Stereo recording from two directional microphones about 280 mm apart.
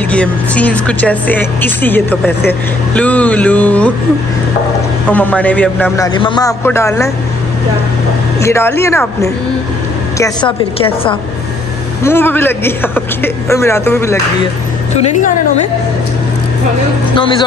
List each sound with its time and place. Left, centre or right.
0.1 s speech: centre
5.0 s a man's voice: centre
8.4 s a man's voice: centre
17.1 s a man's voice: centre